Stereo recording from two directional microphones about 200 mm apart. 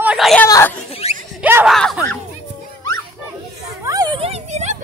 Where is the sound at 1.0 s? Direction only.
30° left (ahead or behind).